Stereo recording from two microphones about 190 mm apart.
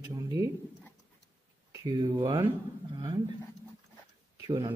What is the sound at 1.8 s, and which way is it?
Speech, 20° right (ahead or behind).